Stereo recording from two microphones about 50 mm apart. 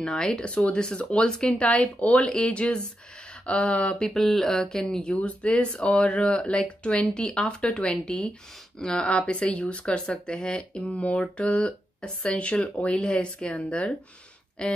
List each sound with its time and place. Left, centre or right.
0.0 s speech: centre
1.7 s speech: left
4.1 s speech: centre